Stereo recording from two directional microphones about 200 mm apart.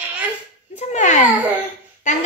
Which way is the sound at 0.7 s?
35° left (ahead or behind).